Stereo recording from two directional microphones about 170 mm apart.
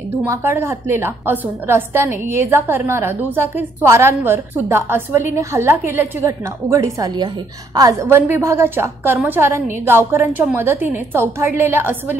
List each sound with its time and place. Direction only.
0.2 s a woman's voice: 15° right (ahead or behind)